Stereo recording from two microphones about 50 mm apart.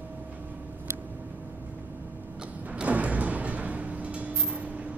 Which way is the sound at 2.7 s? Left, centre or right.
Right.